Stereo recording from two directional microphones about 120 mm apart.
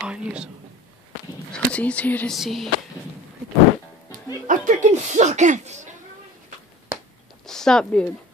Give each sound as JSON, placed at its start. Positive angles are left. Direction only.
{"t": 0.0, "sound": "speech", "side_deg": -10}
{"t": 1.5, "sound": "speech", "side_deg": 10}
{"t": 2.3, "sound": "a sound", "side_deg": 0}
{"t": 4.5, "sound": "speech", "side_deg": -90}
{"t": 7.4, "sound": "speech", "side_deg": 5}